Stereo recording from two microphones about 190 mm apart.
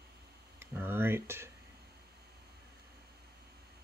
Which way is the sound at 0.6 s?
10° right (ahead or behind).